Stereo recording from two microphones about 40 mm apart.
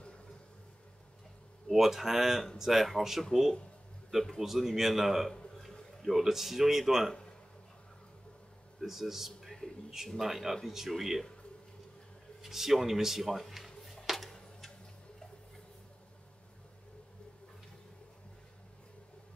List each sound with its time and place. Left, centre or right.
1.7 s speech: centre
4.4 s speech: centre
5.7 s a sound: centre
6.0 s speech: centre
8.8 s speech: centre
12.4 s speech: centre
14.0 s tick-tock: centre